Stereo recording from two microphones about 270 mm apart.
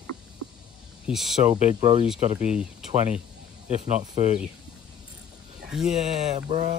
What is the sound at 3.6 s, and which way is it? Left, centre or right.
Speech, right.